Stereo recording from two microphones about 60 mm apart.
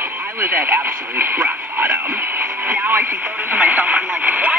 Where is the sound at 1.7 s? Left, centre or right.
Right.